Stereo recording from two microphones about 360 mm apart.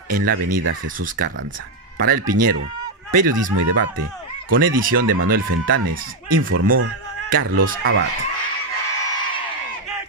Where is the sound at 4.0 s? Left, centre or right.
Right.